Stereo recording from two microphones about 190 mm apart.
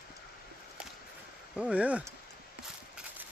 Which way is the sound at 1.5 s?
5° right (ahead or behind).